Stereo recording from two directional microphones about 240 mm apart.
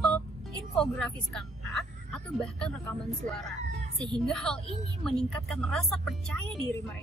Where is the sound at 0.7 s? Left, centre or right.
Centre.